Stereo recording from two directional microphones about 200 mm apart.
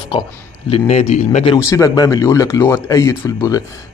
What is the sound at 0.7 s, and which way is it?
Speech, 30° left (ahead or behind).